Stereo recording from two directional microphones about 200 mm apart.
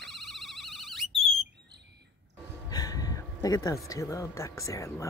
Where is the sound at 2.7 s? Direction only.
20° left (ahead or behind).